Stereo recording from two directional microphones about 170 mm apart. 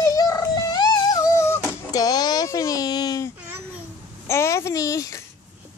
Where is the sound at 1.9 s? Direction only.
20° left (ahead or behind).